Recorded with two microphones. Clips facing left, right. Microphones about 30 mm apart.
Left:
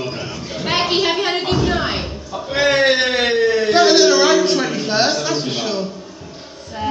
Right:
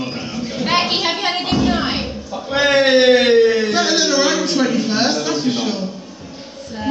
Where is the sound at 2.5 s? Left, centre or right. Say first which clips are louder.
Right 1 dB; right.